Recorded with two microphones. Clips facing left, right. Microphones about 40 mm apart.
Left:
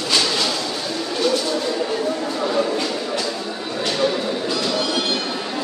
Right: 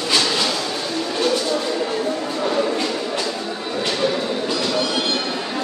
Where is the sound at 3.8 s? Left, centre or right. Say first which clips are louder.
Left 1 dB; centre.